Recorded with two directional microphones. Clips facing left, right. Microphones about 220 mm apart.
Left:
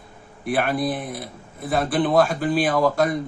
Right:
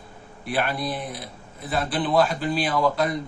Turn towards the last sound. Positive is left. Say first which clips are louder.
# left 3 dB
turn(degrees=50)  # may be behind; listen again after turning